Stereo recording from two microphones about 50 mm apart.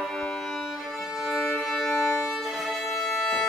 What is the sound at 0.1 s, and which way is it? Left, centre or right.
Music, centre.